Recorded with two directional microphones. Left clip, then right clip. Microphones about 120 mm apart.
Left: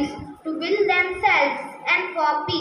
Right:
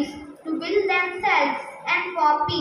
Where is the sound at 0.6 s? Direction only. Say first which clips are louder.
Left 2 dB; 35° left (ahead or behind).